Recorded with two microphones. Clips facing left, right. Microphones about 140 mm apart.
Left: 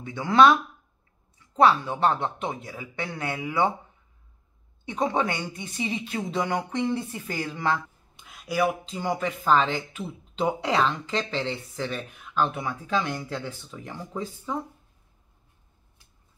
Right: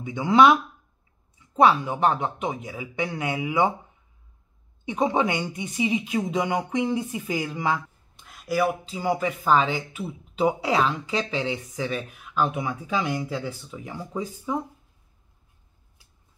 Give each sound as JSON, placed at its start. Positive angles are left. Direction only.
{"t": 0.0, "sound": "speech", "side_deg": -15}
{"t": 4.8, "sound": "speech", "side_deg": -15}
{"t": 8.2, "sound": "speech", "side_deg": 0}